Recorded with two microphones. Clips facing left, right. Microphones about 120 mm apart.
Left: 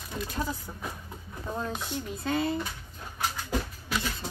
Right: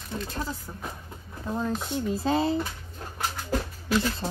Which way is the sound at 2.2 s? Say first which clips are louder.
Right 3 dB; 25° right (ahead or behind).